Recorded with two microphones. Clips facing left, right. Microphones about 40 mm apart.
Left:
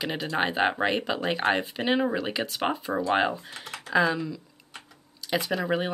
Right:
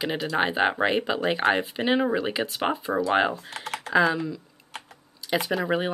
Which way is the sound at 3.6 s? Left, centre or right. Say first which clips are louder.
Right 6 dB; right.